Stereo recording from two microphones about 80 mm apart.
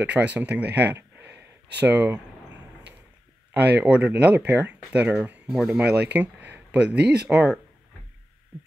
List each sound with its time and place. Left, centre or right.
0.0 s speech: centre
1.1 s a sound: right
1.9 s speech: right
3.8 s speech: centre